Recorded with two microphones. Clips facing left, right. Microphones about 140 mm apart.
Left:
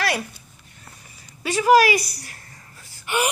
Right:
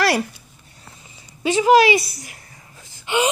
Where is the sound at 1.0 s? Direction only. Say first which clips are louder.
Right 6 dB; 20° right (ahead or behind).